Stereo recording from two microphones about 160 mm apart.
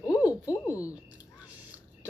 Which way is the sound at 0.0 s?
20° left (ahead or behind).